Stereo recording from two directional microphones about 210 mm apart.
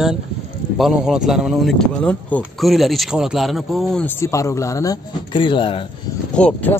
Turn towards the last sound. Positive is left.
turn(degrees=5)  # may be behind; listen again after turning